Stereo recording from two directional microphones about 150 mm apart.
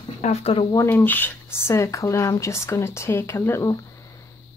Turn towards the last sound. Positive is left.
turn(degrees=15)  # may be behind; listen again after turning